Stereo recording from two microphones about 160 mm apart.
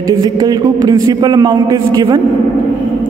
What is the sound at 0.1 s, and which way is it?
A man's voice, 25° right (ahead or behind).